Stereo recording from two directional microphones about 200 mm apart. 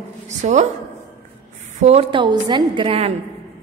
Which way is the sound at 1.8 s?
30° right (ahead or behind).